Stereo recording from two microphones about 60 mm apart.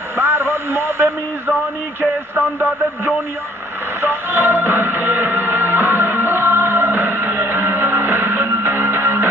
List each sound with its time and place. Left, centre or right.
0.2 s radio: right
4.0 s music: right